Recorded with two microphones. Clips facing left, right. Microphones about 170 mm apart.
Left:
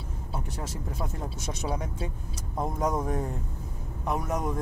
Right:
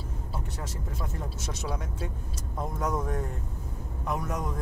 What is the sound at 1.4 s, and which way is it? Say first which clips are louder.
Speech: left 3 dB; 15° left (ahead or behind).